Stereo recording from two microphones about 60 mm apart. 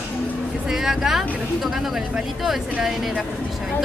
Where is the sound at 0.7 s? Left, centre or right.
Centre.